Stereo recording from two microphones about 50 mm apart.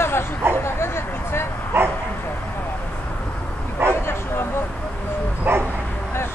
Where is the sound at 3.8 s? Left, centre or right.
Right.